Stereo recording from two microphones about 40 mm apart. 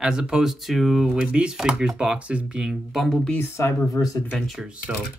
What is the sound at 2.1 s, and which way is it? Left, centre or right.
Speech, right.